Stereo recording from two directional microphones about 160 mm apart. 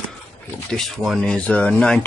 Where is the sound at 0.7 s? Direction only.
5° left (ahead or behind).